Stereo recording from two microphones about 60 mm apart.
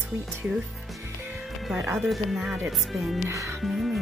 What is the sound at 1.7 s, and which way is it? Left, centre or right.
Speech, right.